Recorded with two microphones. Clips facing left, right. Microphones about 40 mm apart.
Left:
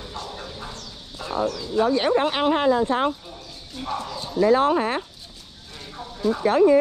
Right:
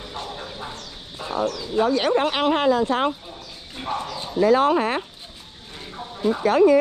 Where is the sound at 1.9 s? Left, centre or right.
Right.